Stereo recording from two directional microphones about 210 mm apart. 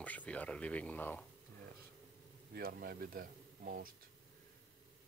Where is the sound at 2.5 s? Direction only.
45° right (ahead or behind).